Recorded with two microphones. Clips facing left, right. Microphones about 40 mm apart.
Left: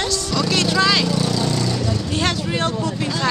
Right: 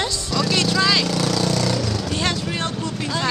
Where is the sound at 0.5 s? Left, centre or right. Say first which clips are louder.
Left 2 dB; centre.